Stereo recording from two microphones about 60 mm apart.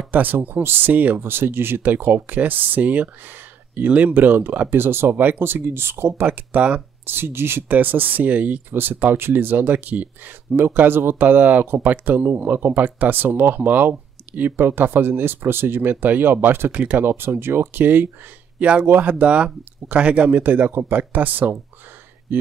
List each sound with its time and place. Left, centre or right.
0.1 s speech: right
6.2 s speech: right
7.1 s speech: right
7.7 s speech: right
18.6 s speech: centre
22.3 s a sound: right